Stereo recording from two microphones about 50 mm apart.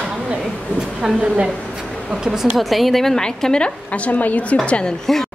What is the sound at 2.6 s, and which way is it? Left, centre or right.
A woman's voice, centre.